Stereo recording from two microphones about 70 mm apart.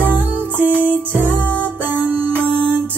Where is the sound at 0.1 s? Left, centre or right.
Right.